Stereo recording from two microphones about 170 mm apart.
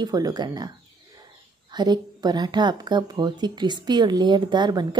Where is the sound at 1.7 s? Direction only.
25° right (ahead or behind).